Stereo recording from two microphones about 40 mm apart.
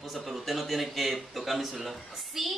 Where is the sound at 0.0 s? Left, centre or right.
Centre.